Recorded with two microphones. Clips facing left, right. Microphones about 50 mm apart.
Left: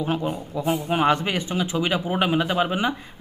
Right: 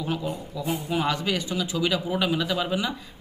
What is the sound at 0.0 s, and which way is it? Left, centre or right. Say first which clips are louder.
Speech: left 4 dB; left.